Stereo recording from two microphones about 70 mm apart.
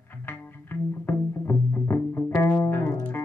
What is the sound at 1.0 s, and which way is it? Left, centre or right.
Music, left.